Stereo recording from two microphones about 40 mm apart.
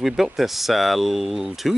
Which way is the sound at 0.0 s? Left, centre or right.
Centre.